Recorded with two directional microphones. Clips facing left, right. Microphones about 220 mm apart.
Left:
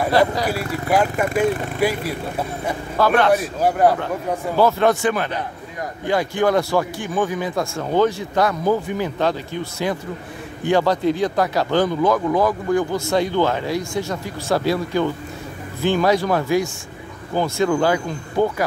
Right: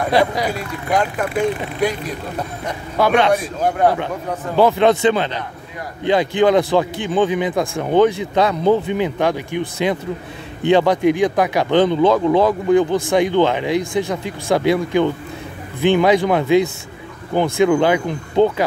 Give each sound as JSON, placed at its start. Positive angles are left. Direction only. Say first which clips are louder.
{"t": 0.5, "sound": "a man's voice", "louder": "left 1 dB", "side_deg": 5}
{"t": 4.6, "sound": "speech", "louder": "right 3 dB", "side_deg": -20}